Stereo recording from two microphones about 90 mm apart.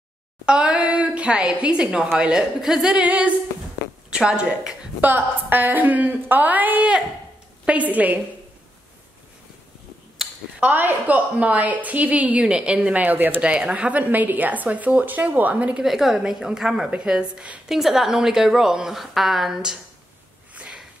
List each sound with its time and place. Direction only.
0.5 s a woman's voice: 10° right (ahead or behind)
5.0 s a woman's voice: 20° right (ahead or behind)
10.6 s a woman's voice: 20° right (ahead or behind)
15.8 s a woman's voice: 5° right (ahead or behind)
20.5 s sniff: 10° right (ahead or behind)